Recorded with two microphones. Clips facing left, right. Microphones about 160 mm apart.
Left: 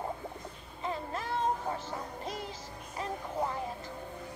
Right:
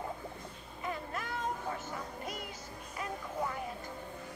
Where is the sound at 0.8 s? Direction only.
30° left (ahead or behind).